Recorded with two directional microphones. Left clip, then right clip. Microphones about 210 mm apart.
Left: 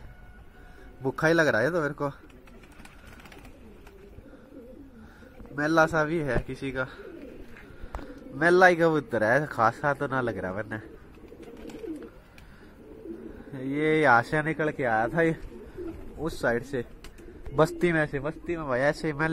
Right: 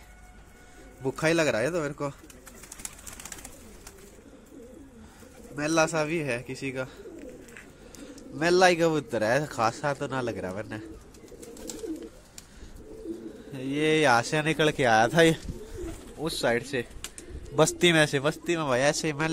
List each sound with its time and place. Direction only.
1.0 s a man's voice: centre (ahead or behind)
5.6 s a man's voice: centre (ahead or behind)
8.4 s a man's voice: 5° right (ahead or behind)
13.5 s a man's voice: 15° right (ahead or behind)
14.7 s speech: 35° right (ahead or behind)
16.2 s a man's voice: 5° right (ahead or behind)
17.7 s a man's voice: 25° right (ahead or behind)
18.7 s a man's voice: 15° right (ahead or behind)